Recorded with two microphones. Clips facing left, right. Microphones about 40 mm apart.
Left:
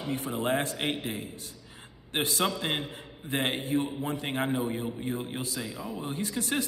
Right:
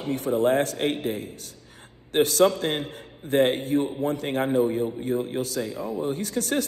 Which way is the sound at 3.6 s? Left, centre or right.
Right.